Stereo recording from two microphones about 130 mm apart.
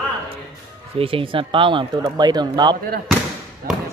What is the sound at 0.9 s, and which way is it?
Speech, 45° right (ahead or behind).